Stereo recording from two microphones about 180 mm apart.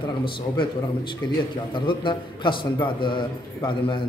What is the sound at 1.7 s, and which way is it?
A man's voice, 25° left (ahead or behind).